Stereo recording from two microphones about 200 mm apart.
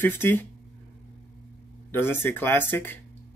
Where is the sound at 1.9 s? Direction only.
10° left (ahead or behind).